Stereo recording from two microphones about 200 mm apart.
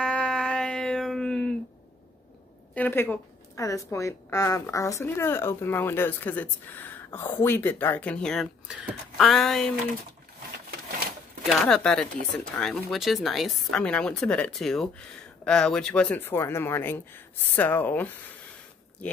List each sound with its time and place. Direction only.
0.0 s a sound: 5° left (ahead or behind)
2.7 s a woman's voice: 10° left (ahead or behind)
11.4 s a woman's voice: 5° left (ahead or behind)